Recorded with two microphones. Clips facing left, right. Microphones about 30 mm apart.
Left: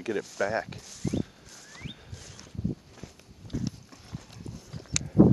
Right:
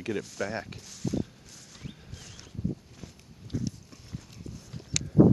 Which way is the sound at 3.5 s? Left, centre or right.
Centre.